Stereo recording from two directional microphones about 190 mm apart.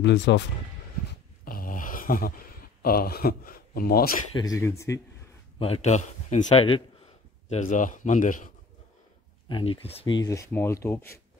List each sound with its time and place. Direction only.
0.0 s speech: 65° left (ahead or behind)
1.4 s a sound: 50° left (ahead or behind)
2.8 s speech: 50° left (ahead or behind)
4.4 s speech: 15° left (ahead or behind)
5.6 s a man's voice: 35° left (ahead or behind)
9.5 s speech: 30° left (ahead or behind)